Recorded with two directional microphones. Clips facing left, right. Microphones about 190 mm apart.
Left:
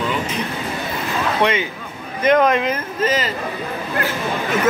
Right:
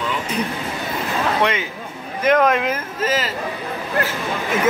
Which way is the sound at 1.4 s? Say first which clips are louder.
Left 2 dB; centre (ahead or behind).